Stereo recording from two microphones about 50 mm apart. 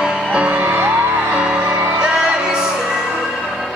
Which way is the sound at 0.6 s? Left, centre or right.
Right.